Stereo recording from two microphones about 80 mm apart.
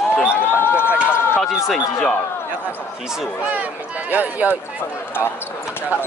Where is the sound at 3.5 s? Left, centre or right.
Centre.